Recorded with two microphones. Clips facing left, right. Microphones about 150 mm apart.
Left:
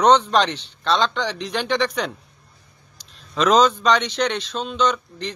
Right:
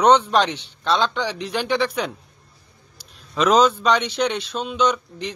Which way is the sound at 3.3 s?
10° right (ahead or behind).